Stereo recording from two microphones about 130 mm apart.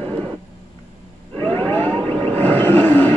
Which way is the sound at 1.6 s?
10° left (ahead or behind).